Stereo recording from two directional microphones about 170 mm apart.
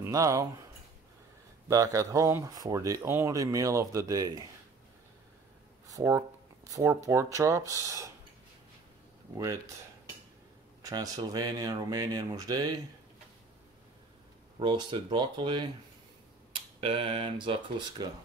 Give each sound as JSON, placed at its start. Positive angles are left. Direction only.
{"t": 0.0, "sound": "speech", "side_deg": -20}
{"t": 1.7, "sound": "speech", "side_deg": -20}
{"t": 5.9, "sound": "speech", "side_deg": -20}
{"t": 10.8, "sound": "speech", "side_deg": -20}
{"t": 14.6, "sound": "speech", "side_deg": -30}